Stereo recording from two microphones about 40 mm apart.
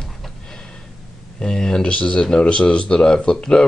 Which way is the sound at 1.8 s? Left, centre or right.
Left.